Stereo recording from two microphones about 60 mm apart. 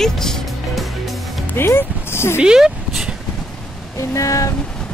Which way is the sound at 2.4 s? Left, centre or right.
Centre.